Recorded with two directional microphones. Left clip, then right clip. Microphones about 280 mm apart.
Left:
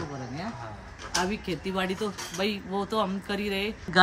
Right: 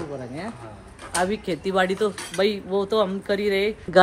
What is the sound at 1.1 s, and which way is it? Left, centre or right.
Speech, centre.